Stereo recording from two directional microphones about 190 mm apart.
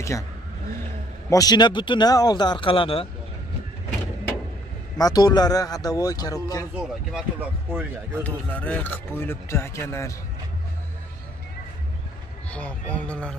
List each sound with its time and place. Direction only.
1.3 s speech: 20° left (ahead or behind)
4.9 s speech: 20° left (ahead or behind)
6.7 s speech: centre (ahead or behind)
8.2 s speech: 10° left (ahead or behind)
12.4 s speech: 5° left (ahead or behind)